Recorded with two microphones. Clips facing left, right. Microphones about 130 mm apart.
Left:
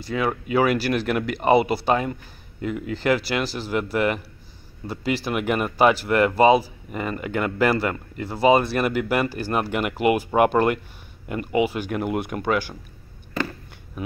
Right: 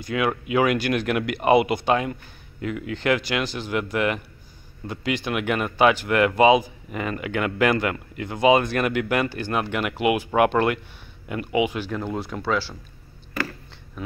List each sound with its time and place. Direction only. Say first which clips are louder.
0.0 s speech: even; centre (ahead or behind)
11.9 s speech: left 3 dB; 15° left (ahead or behind)